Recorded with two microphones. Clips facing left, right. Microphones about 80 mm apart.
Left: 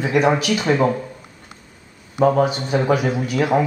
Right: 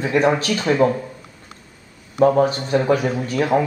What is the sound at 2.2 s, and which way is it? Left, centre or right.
Speech, left.